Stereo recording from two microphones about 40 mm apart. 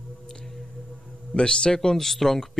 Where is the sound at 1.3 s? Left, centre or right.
Left.